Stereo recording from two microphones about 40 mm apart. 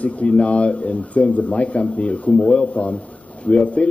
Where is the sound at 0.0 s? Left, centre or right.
Left.